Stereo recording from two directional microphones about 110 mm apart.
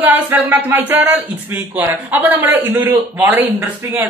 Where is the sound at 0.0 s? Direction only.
15° right (ahead or behind).